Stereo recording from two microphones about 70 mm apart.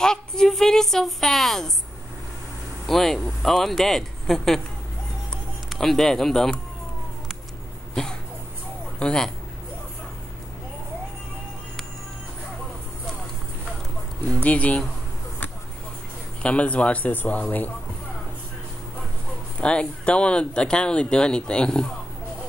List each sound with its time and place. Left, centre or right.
0.0 s a woman's voice: centre
2.9 s a woman's voice: centre
5.3 s music: centre
9.0 s speech: centre
14.2 s speech: centre
16.4 s speech: centre
19.6 s speech: centre